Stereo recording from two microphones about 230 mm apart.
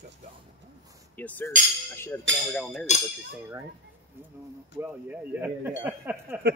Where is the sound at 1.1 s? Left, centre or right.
Centre.